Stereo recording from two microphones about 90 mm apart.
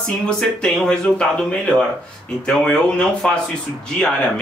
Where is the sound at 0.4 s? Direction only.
10° left (ahead or behind).